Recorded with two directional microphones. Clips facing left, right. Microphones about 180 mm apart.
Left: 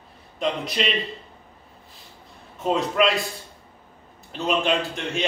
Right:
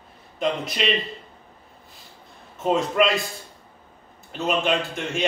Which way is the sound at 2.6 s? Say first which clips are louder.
Right 1 dB; centre (ahead or behind).